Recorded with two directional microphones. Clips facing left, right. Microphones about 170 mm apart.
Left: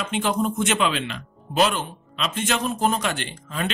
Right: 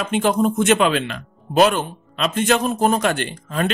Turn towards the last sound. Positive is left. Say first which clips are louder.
# right 6 dB
turn(degrees=-50)  # may be behind; listen again after turning